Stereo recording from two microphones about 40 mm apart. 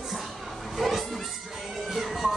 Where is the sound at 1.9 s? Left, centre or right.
Centre.